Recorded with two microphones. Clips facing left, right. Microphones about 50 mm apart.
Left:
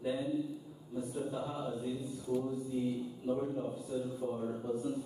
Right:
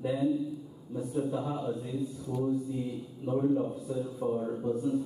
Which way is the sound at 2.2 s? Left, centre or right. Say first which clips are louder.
Right 4 dB; centre.